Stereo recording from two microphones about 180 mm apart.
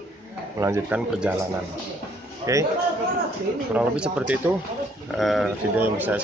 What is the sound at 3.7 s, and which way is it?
A man's voice, 5° right (ahead or behind).